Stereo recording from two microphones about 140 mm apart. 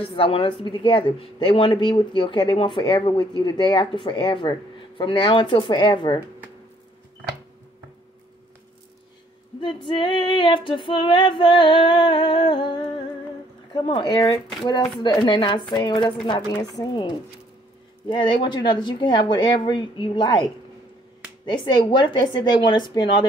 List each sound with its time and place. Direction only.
0.0 s speech: 40° left (ahead or behind)
9.6 s speech: 35° left (ahead or behind)